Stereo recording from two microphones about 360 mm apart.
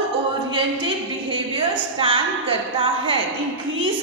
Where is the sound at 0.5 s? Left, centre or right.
Centre.